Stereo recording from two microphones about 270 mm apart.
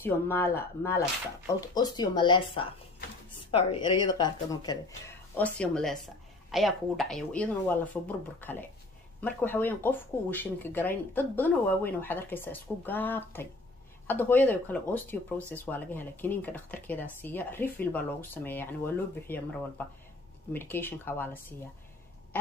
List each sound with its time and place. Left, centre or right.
0.0 s speech: centre
20.5 s speech: centre